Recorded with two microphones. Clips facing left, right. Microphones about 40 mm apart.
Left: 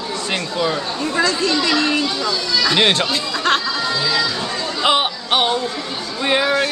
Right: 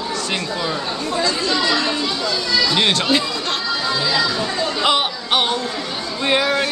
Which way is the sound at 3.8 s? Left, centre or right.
Centre.